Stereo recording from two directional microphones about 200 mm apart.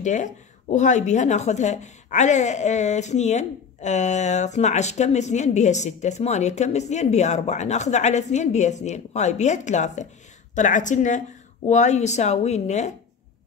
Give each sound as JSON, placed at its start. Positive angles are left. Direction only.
{"t": 0.0, "sound": "a woman's voice", "side_deg": 35}